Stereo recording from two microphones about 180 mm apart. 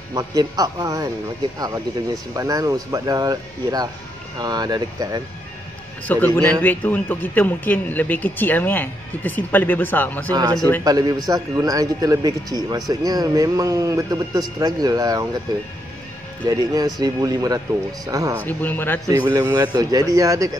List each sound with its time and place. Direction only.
0.1 s a man's voice: 20° right (ahead or behind)
2.3 s a man's voice: 20° right (ahead or behind)
6.0 s speech: 10° left (ahead or behind)
10.3 s a man's voice: 20° right (ahead or behind)
16.4 s a man's voice: 20° right (ahead or behind)
18.4 s speech: 10° left (ahead or behind)
19.0 s a man's voice: 20° right (ahead or behind)